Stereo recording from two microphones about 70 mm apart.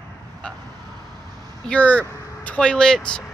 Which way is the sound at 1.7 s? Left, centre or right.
Centre.